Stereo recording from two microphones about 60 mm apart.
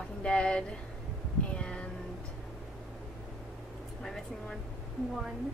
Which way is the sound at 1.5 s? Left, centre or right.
Centre.